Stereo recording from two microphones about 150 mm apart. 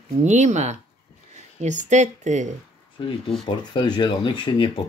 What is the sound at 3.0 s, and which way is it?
Speech, 35° left (ahead or behind).